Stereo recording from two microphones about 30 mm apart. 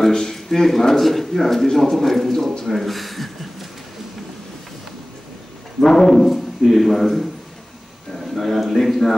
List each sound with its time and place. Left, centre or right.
0.1 s a man's voice: centre
5.8 s speech: centre
8.1 s a sound: centre
8.7 s a man's voice: centre